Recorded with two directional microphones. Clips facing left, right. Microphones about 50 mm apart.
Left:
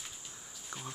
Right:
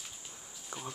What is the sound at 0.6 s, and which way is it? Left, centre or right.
Speech, centre.